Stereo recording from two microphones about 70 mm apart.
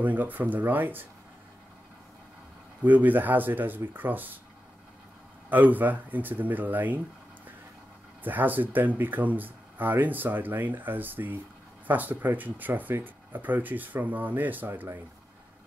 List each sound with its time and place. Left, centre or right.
0.0 s speech: right
2.8 s speech: right
5.5 s speech: right
8.2 s speech: right